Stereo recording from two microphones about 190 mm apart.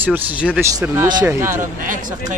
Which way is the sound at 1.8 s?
45° right (ahead or behind).